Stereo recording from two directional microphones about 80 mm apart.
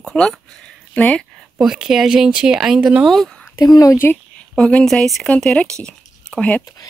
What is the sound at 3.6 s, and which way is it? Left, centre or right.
Speech, left.